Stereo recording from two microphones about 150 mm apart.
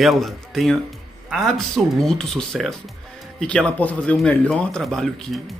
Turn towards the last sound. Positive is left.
turn(degrees=0)  # may be behind; listen again after turning